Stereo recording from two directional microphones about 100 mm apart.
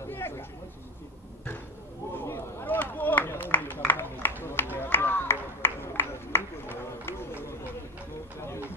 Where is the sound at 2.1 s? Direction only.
25° left (ahead or behind).